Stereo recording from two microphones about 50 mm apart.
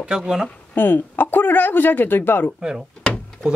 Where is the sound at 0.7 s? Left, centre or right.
Left.